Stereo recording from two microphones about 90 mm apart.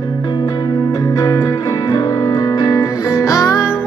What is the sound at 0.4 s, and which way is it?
Music, 50° left (ahead or behind).